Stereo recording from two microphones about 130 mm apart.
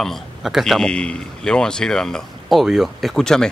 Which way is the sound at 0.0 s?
Centre (ahead or behind).